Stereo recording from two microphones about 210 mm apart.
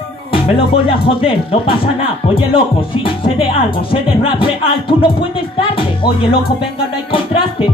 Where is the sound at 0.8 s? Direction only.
25° left (ahead or behind).